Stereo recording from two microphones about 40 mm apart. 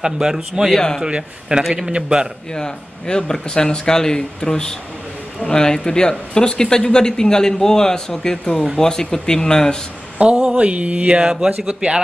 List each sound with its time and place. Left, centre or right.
0.0 s a man's voice: centre
0.7 s speech: centre
1.0 s speech: right
2.5 s speech: centre
10.2 s mantra: right
11.2 s speech: centre